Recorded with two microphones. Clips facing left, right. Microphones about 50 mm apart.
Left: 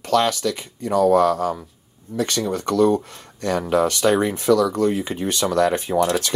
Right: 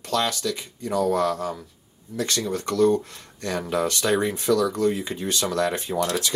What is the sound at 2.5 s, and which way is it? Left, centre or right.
Speech, left.